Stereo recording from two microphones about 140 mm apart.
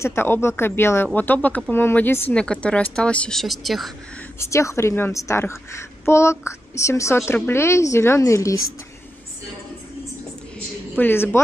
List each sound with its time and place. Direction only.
0.0 s speech: 15° left (ahead or behind); by 3.9 s centre (ahead or behind)
4.4 s a woman's voice: 20° left (ahead or behind)
11.0 s speech: 15° left (ahead or behind)